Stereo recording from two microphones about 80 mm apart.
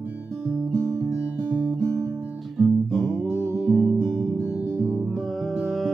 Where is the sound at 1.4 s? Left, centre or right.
Right.